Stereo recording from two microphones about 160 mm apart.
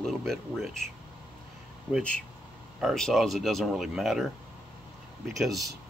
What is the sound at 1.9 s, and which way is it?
Speech, 5° left (ahead or behind).